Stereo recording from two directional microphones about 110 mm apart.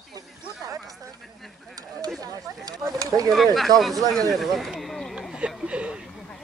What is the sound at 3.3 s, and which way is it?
Speech, centre (ahead or behind).